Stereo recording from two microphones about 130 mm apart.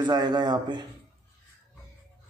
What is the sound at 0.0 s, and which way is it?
Speech, 35° right (ahead or behind).